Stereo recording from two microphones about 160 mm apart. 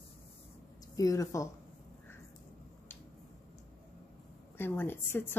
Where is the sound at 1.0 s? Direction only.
20° left (ahead or behind).